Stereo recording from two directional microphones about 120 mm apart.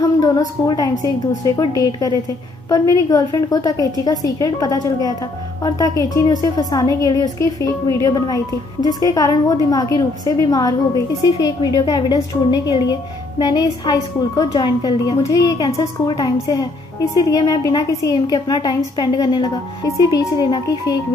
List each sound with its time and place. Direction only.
0.2 s a woman's voice: 30° left (ahead or behind)